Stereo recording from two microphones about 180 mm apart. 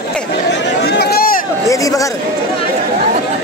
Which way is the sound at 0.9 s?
60° left (ahead or behind).